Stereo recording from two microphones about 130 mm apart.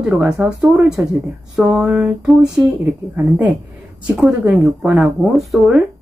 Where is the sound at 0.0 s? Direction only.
5° right (ahead or behind).